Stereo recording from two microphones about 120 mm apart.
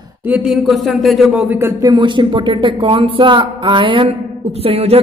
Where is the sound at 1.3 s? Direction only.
15° right (ahead or behind).